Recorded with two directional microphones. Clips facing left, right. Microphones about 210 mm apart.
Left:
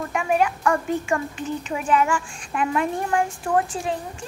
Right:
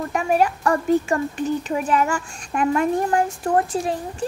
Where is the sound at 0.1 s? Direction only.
40° right (ahead or behind).